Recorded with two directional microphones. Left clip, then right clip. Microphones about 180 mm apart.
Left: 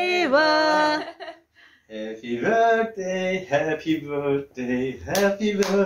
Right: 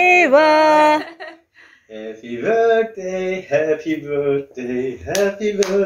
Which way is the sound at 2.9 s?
60° left (ahead or behind).